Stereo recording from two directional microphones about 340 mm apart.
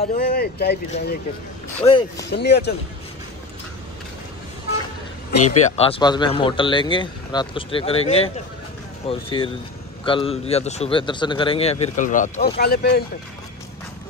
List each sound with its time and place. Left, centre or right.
0.0 s speech: left
1.9 s a man's voice: centre
2.3 s speech: left
5.7 s a man's voice: centre